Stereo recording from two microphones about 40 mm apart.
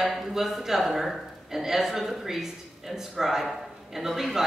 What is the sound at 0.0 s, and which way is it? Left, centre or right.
A man's voice, centre.